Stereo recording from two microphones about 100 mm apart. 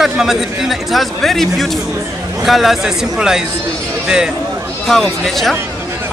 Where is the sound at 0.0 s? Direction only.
5° right (ahead or behind).